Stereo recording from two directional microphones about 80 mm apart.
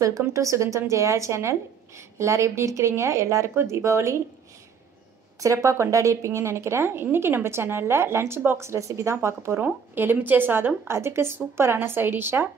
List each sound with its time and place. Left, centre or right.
0.2 s speech: right
5.4 s speech: right